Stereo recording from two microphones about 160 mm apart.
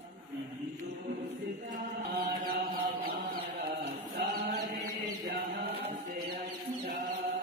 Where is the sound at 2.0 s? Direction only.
75° right (ahead or behind).